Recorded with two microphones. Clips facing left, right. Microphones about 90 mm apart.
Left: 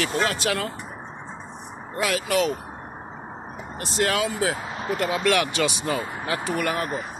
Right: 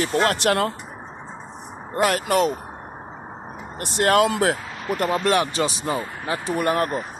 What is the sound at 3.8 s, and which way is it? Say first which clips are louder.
Speech: right 6 dB; 55° right (ahead or behind).